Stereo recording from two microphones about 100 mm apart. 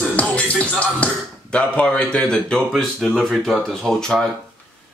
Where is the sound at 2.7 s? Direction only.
Centre (ahead or behind).